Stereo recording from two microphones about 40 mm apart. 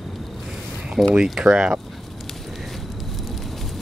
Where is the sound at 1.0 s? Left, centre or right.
Centre.